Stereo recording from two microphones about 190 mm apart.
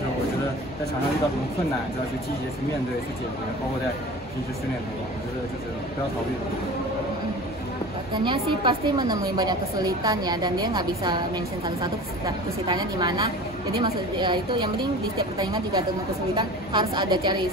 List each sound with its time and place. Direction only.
8.1 s a woman's voice: 25° right (ahead or behind)